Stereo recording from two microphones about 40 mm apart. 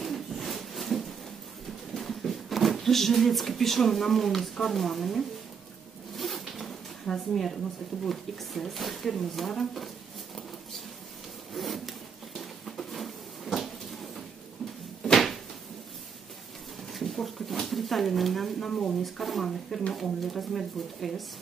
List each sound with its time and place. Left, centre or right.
0.0 s a sound: centre
2.0 s speech: centre
6.1 s zipper: centre
7.1 s speech: centre
11.5 s wood: centre
12.4 s a sound: centre
15.0 s cupboard open or close: centre
16.8 s a sound: centre
18.7 s speech: centre
19.0 s speech: centre